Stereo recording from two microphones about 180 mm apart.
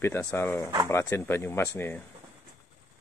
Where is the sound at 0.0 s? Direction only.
15° left (ahead or behind).